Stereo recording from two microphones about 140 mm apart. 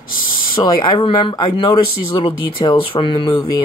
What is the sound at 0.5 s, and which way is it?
Speech, 30° left (ahead or behind).